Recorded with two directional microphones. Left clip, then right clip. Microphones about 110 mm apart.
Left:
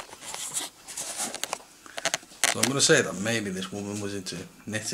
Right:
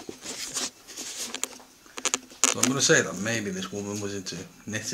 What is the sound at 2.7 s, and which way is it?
Speech, 15° left (ahead or behind).